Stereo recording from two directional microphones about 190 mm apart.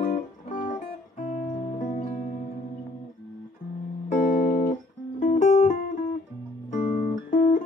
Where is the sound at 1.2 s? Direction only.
40° left (ahead or behind).